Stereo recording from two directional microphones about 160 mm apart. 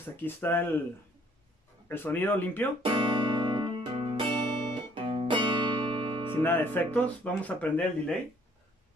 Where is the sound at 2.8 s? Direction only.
30° right (ahead or behind).